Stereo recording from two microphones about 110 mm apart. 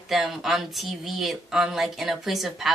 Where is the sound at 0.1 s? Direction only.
Centre (ahead or behind).